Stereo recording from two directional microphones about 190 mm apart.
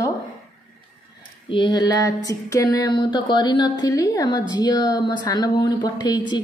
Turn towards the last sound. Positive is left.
turn(degrees=20)  # may be behind; listen again after turning